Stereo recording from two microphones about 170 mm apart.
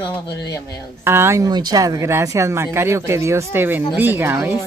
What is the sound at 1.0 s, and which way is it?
Speech, 15° right (ahead or behind).